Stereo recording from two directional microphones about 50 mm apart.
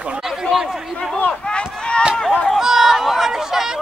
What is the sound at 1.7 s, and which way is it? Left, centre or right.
Run, centre.